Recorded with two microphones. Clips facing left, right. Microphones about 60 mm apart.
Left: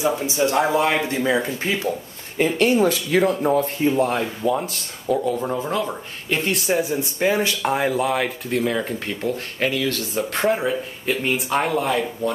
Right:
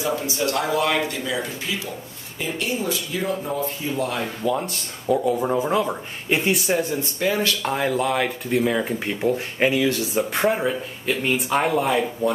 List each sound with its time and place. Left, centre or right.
0.0 s speech: centre; by 1.9 s left
2.3 s speech: left
3.4 s speech: left
4.2 s speech: centre
6.8 s speech: centre
10.3 s speech: centre